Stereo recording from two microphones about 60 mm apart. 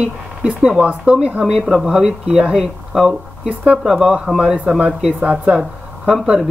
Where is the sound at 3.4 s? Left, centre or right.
Right.